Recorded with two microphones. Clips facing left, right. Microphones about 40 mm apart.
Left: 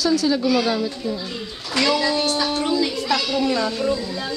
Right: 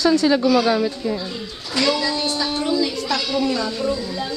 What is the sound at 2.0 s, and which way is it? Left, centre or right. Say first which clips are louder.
Speech: left 2 dB; left.